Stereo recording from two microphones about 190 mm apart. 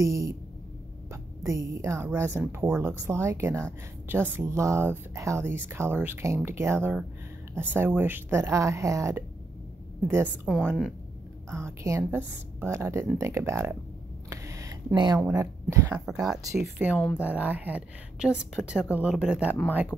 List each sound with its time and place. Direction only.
0.0 s speech: 15° right (ahead or behind)
14.3 s a sound: 15° right (ahead or behind)
15.1 s speech: 15° right (ahead or behind)
16.9 s speech: 10° left (ahead or behind)
17.2 s speech: 10° right (ahead or behind)